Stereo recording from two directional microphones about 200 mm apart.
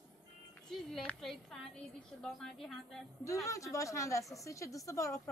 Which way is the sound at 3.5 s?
15° left (ahead or behind).